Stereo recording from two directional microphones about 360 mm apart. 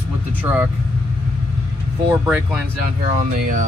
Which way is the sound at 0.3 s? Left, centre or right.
Centre.